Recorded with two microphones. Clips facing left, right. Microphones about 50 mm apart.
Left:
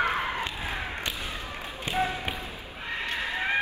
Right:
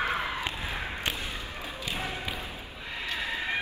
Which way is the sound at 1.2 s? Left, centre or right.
Left.